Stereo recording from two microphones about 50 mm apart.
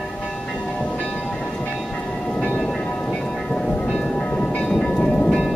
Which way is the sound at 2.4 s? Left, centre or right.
Left.